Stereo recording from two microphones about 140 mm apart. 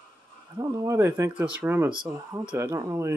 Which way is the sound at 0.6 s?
25° right (ahead or behind).